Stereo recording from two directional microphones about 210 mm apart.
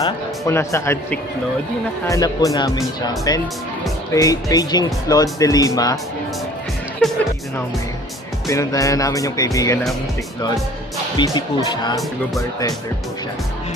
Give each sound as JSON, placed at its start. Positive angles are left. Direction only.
{"t": 0.0, "sound": "speech", "side_deg": 15}
{"t": 7.0, "sound": "speech", "side_deg": 0}
{"t": 8.5, "sound": "speech", "side_deg": 15}
{"t": 11.1, "sound": "speech", "side_deg": 20}